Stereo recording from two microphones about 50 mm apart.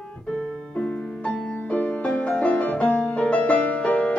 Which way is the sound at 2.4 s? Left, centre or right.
Left.